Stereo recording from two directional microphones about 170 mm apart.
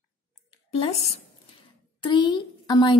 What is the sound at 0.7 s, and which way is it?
Speech, 40° left (ahead or behind).